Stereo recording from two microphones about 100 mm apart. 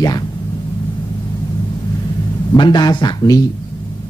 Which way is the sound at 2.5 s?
50° left (ahead or behind).